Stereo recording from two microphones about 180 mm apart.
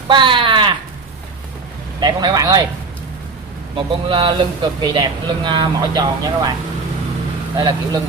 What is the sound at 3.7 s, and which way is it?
Speech, 30° right (ahead or behind).